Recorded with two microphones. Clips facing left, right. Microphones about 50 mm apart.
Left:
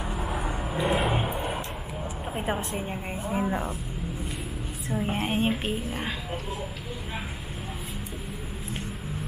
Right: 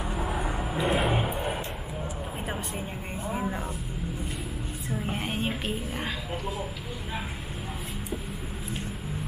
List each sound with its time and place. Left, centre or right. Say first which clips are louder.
0.0 s vehicle: even; centre
2.3 s a sound: left 8 dB; centre
2.8 s a woman's voice: left 2 dB; centre
4.8 s a woman's voice: left 4 dB; centre